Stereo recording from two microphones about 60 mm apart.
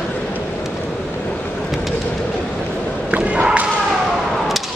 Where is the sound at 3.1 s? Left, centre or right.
Right.